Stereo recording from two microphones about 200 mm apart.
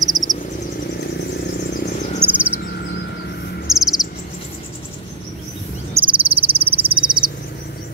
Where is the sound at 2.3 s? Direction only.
5° right (ahead or behind).